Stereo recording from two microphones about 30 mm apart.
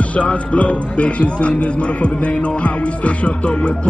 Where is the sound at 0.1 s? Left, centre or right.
Left.